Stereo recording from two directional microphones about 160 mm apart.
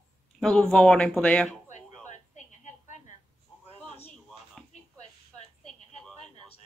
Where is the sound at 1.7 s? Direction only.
50° left (ahead or behind).